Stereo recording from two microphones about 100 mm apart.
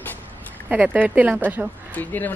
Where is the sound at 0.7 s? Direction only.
10° right (ahead or behind).